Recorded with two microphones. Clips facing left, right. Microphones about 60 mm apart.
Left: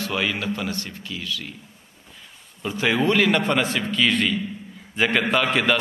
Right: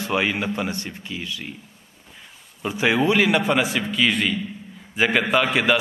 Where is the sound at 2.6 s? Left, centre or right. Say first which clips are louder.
Right 1 dB; centre.